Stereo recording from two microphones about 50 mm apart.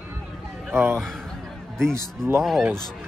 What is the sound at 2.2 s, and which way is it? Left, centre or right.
Speech, right.